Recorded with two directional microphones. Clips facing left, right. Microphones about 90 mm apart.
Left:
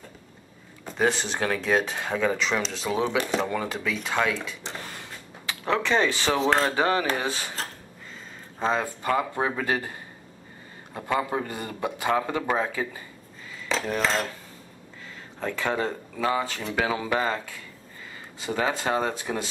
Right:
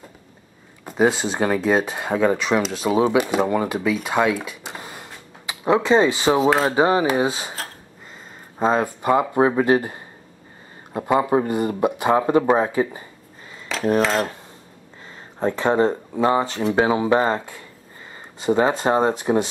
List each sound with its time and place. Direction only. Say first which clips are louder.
0.8 s speech: right 6 dB; 10° right (ahead or behind)
5.5 s a sound: right 7 dB; 15° right (ahead or behind)
5.9 s speech: right 6 dB; 20° right (ahead or behind)
8.5 s speech: right 6 dB; 15° right (ahead or behind)
13.7 s cutlery: even; 5° right (ahead or behind)
15.0 s speech: right 8 dB; 30° right (ahead or behind)